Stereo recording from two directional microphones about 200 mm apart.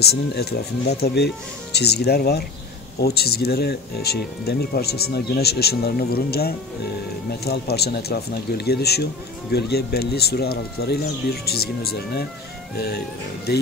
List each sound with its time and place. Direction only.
0.0 s speech: 55° left (ahead or behind)